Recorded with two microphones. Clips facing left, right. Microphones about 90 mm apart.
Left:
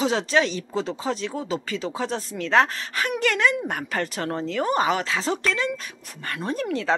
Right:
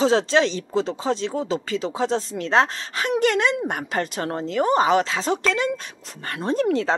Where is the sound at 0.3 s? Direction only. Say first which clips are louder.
Right 2 dB; 25° right (ahead or behind).